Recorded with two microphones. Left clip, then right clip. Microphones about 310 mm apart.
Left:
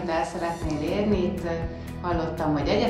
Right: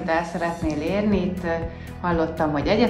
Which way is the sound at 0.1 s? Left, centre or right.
Right.